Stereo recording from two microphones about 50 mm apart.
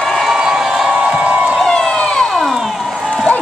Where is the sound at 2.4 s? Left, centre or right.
Centre.